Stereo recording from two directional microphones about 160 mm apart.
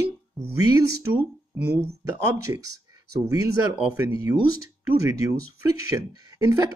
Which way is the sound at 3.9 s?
20° right (ahead or behind).